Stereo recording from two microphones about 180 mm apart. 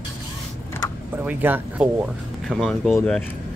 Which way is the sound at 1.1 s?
10° right (ahead or behind).